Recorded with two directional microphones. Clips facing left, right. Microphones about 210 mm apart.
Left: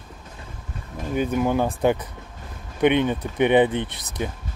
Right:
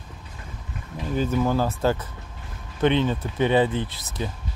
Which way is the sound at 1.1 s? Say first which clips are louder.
Left 1 dB; 15° left (ahead or behind).